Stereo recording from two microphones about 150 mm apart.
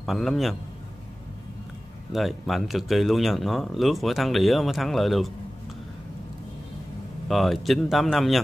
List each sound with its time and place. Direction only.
0.0 s speech: centre (ahead or behind)
2.1 s speech: centre (ahead or behind)
7.2 s speech: centre (ahead or behind)